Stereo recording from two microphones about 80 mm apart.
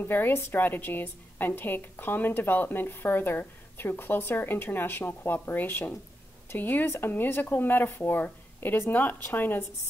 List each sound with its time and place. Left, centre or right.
0.0 s a woman's voice: left